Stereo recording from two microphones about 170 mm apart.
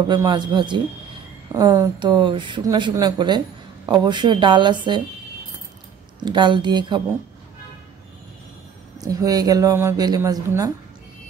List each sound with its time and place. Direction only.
0.1 s speech: 25° right (ahead or behind)
6.2 s speech: 25° right (ahead or behind)
8.9 s speech: 20° right (ahead or behind)